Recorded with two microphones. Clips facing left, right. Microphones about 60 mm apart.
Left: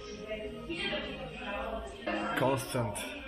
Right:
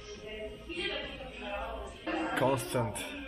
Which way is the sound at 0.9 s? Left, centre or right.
Centre.